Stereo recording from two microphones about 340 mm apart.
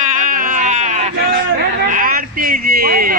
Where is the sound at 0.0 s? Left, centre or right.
Right.